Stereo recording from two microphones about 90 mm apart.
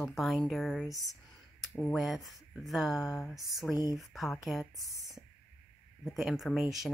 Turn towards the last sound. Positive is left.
turn(degrees=-5)  # may be behind; listen again after turning